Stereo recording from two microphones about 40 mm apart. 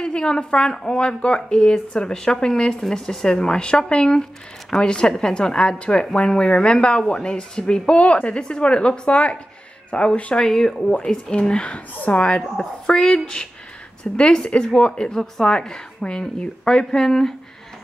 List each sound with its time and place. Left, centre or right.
0.0 s a woman's voice: left
10.4 s a woman's voice: centre; by 12.2 s left
12.2 s a woman's voice: left